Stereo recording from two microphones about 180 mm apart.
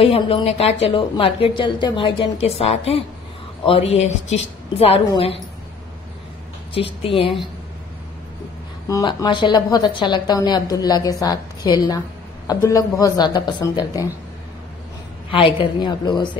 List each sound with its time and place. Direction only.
0.0 s a woman's voice: 30° left (ahead or behind)
6.7 s a woman's voice: 30° left (ahead or behind)
8.8 s a woman's voice: 20° left (ahead or behind)
15.3 s a woman's voice: 30° left (ahead or behind)